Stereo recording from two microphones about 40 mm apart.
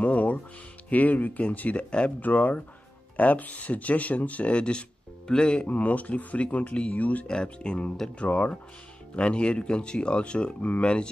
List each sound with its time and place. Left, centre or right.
0.0 s music: left
0.8 s speech: left
1.8 s speech: left
2.2 s speech: left
5.7 s speech: left
7.0 s speech: left
7.2 s speech: left